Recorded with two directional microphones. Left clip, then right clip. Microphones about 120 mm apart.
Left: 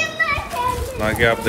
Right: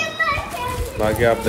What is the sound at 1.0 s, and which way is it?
Speech, 20° right (ahead or behind).